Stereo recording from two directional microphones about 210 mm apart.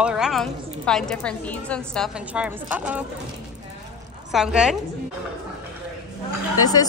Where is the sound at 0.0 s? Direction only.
5° right (ahead or behind).